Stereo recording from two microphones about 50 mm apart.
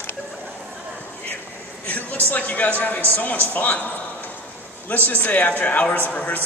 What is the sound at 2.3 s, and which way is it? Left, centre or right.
A man's voice, left.